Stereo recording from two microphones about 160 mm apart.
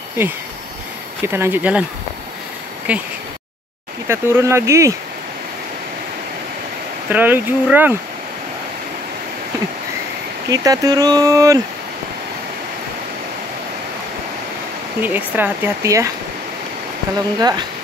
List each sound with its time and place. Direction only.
1.2 s speech: 15° right (ahead or behind)
2.9 s speech: 10° right (ahead or behind)
4.1 s speech: 15° right (ahead or behind)
7.1 s speech: 10° right (ahead or behind)
10.5 s speech: 20° right (ahead or behind)
15.0 s speech: 10° right (ahead or behind)
17.4 s speech: 25° right (ahead or behind)